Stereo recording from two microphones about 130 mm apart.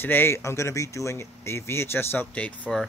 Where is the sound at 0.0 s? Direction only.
15° left (ahead or behind).